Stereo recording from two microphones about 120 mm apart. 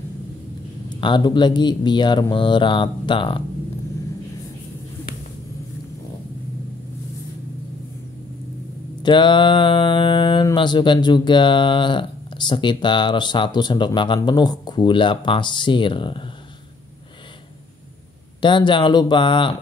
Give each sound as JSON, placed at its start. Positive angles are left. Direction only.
{"t": 1.0, "sound": "speech", "side_deg": 40}
{"t": 9.0, "sound": "mantra", "side_deg": 40}
{"t": 10.5, "sound": "speech", "side_deg": 40}
{"t": 18.4, "sound": "mantra", "side_deg": 40}